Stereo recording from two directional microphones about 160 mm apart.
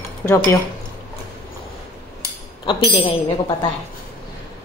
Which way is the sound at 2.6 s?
35° left (ahead or behind).